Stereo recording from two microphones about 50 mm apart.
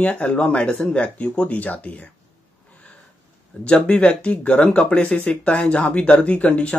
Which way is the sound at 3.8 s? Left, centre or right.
Left.